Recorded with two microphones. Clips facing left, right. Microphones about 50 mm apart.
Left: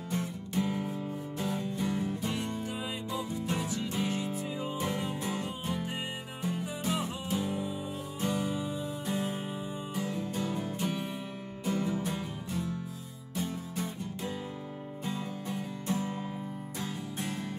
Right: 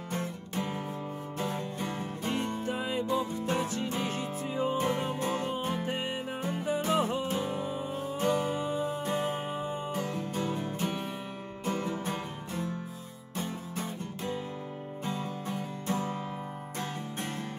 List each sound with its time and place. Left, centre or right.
0.1 s music: right